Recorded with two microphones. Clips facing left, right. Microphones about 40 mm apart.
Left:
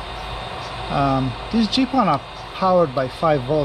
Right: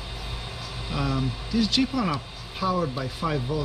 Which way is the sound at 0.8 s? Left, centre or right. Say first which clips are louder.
Left 9 dB; left.